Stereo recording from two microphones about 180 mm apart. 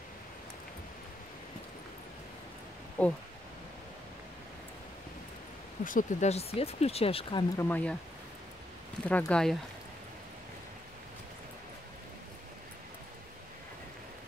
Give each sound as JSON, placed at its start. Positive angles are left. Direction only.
{"t": 3.0, "sound": "speech", "side_deg": 10}
{"t": 5.9, "sound": "speech", "side_deg": 45}
{"t": 7.5, "sound": "speech", "side_deg": 10}
{"t": 9.0, "sound": "speech", "side_deg": 5}